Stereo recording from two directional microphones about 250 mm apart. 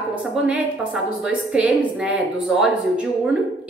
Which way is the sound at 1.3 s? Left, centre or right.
Centre.